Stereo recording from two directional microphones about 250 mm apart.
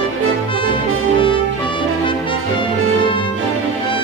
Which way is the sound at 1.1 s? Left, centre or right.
Centre.